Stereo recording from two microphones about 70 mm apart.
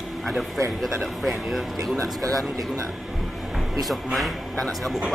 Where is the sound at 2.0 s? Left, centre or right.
Right.